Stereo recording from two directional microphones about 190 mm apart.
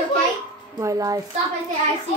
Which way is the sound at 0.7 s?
20° right (ahead or behind).